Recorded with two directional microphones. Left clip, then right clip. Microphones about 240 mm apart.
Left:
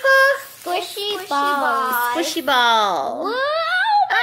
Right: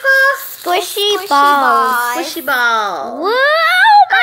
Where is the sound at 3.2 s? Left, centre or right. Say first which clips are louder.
Right 14 dB; right.